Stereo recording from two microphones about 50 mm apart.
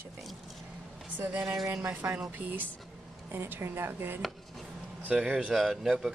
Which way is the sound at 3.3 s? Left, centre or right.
Right.